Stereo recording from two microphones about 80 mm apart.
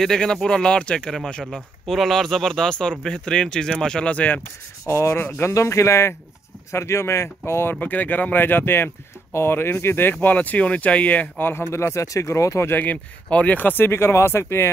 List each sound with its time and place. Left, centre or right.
0.0 s speech: centre
4.8 s speech: left
7.8 s speech: left
12.7 s speech: left